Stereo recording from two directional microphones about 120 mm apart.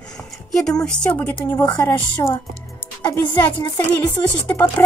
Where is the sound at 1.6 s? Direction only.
30° left (ahead or behind).